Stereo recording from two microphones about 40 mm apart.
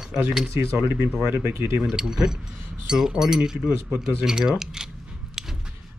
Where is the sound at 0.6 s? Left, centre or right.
Right.